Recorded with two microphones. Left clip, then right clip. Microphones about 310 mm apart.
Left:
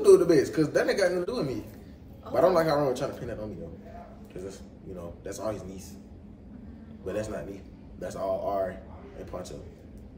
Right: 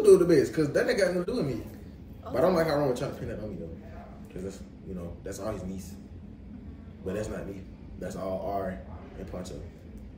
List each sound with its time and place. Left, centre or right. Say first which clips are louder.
0.0 s speech: even; centre
4.5 s speech: right 1 dB; centre
7.1 s speech: left 1 dB; centre